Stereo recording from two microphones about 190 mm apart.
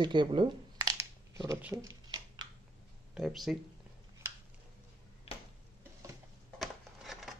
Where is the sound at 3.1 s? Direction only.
Centre (ahead or behind).